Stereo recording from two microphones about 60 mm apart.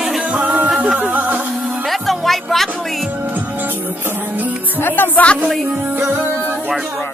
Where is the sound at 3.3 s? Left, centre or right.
Right.